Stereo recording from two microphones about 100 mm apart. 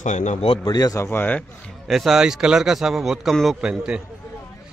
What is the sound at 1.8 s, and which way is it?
A man's voice, centre (ahead or behind).